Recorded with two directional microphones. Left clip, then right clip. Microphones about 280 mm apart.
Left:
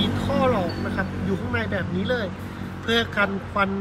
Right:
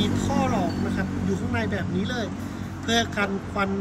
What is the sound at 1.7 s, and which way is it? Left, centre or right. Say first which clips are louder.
Speech: left 4 dB; centre.